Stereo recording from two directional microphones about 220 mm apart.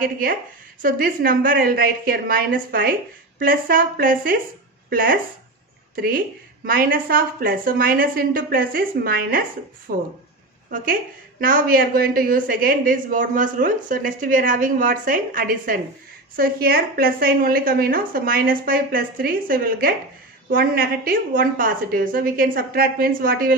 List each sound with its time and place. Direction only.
0.0 s a woman's voice: 40° right (ahead or behind)
11.4 s a woman's voice: 40° right (ahead or behind)